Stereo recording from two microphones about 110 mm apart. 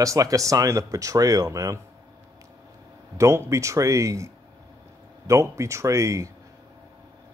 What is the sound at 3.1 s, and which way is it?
Speech, 25° right (ahead or behind).